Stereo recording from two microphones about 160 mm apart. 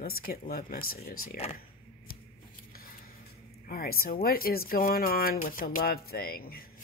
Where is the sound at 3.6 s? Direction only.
70° left (ahead or behind).